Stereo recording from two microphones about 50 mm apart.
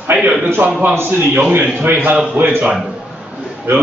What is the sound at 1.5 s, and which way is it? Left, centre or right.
Speech, right.